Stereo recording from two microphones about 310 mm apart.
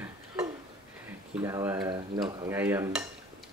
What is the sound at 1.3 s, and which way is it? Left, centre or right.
Speech, centre.